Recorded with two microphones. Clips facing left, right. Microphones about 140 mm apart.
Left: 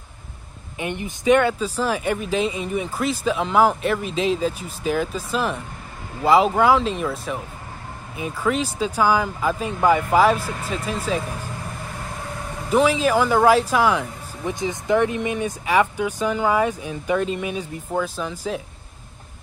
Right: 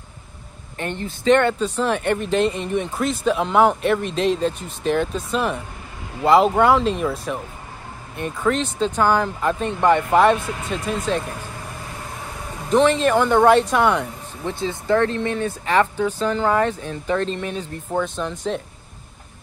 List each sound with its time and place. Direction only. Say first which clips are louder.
0.7 s speech: even; 15° left (ahead or behind)
12.6 s speech: right 2 dB; 5° left (ahead or behind)
14.4 s speech: even; 15° left (ahead or behind)